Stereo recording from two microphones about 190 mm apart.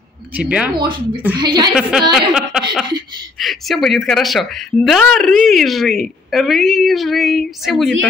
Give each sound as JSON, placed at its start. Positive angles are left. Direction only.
{"t": 0.3, "sound": "speech", "side_deg": -5}
{"t": 0.7, "sound": "speech", "side_deg": -25}
{"t": 1.8, "sound": "a woman's voice", "side_deg": 0}